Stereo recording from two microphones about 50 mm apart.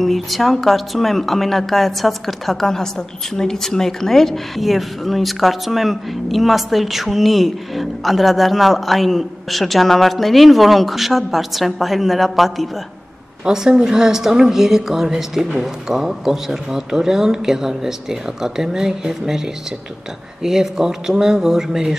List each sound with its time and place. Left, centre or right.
0.0 s speech: centre
13.5 s speech: centre